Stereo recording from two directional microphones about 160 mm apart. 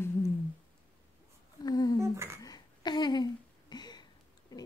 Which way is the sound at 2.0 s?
15° right (ahead or behind).